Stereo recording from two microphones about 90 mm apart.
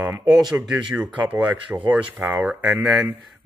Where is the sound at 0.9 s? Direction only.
15° right (ahead or behind).